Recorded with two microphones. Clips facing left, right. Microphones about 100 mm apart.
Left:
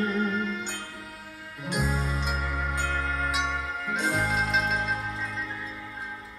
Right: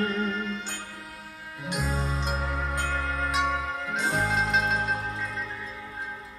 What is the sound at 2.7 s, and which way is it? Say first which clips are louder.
Music: left 1 dB; centre (ahead or behind).